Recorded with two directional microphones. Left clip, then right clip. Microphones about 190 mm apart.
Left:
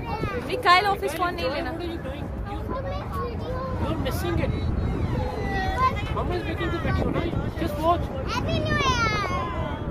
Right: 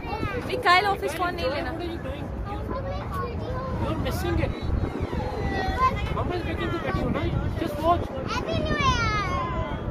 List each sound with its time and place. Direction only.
0.5 s speech: 10° left (ahead or behind)
5.8 s vehicle: 20° left (ahead or behind)
7.2 s speech: 15° left (ahead or behind)
8.4 s a sound: 50° left (ahead or behind)